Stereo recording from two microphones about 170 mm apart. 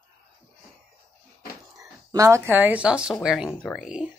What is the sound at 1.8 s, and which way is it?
Speech, 20° right (ahead or behind).